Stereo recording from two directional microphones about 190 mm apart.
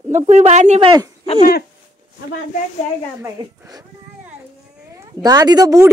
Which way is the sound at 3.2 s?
20° right (ahead or behind).